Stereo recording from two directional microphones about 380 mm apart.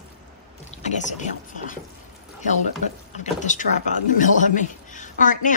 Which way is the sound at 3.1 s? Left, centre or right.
Centre.